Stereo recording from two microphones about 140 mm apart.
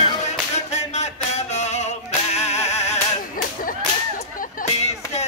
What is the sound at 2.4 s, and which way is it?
Music, 50° left (ahead or behind).